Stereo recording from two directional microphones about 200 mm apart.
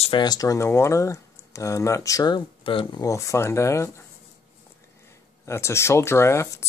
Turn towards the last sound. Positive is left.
turn(degrees=15)  # may be behind; listen again after turning